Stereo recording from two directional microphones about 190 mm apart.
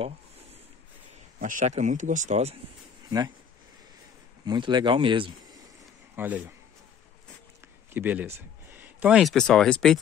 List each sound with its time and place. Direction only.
1.4 s speech: 45° right (ahead or behind)
4.5 s speech: 25° right (ahead or behind)
6.1 s a man's voice: 10° right (ahead or behind)
7.9 s speech: 10° right (ahead or behind)